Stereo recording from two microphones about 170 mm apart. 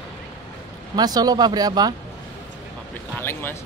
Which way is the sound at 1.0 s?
20° right (ahead or behind).